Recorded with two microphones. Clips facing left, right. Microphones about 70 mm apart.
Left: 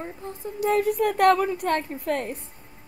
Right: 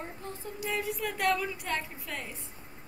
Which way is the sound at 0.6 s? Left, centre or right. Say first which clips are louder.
Left 12 dB; left.